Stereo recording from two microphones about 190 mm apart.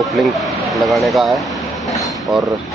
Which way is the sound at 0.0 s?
Centre (ahead or behind).